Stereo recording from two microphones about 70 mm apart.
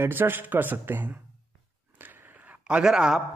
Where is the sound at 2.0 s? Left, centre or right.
Right; by 3.2 s centre.